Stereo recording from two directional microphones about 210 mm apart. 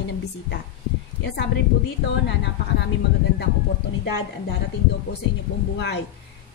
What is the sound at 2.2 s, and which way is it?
Speech, 55° left (ahead or behind).